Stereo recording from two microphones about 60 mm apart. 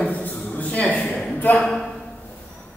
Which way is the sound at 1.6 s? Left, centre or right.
Centre.